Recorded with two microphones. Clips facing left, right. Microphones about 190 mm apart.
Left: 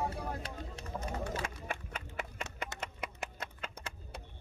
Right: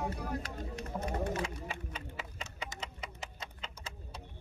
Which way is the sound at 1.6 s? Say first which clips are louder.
Left 1 dB; 55° left (ahead or behind).